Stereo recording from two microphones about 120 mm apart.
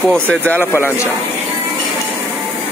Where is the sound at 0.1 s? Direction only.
10° left (ahead or behind).